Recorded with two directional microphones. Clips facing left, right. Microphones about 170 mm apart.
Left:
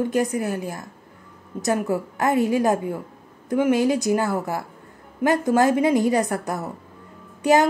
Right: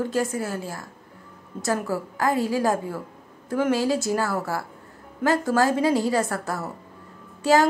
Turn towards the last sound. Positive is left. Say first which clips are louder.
# left 1 dB
turn(degrees=20)  # may be behind; listen again after turning